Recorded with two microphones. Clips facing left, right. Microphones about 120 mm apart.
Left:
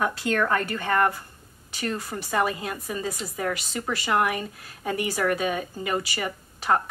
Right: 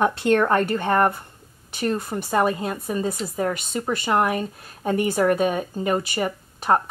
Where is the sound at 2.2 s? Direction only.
40° right (ahead or behind).